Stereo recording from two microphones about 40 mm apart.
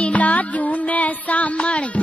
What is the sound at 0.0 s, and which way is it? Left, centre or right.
Music, left.